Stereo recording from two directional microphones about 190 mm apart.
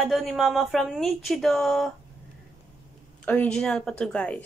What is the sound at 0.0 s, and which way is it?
Speech, centre (ahead or behind).